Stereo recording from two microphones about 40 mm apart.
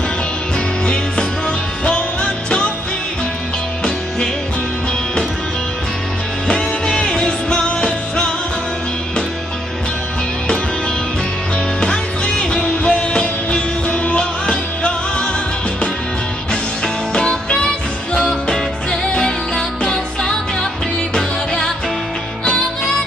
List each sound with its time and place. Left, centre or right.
1.9 s music: left
6.4 s music: centre
11.5 s music: left
16.8 s music: centre
19.1 s music: centre